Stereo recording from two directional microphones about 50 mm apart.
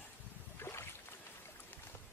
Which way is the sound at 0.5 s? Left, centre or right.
Left.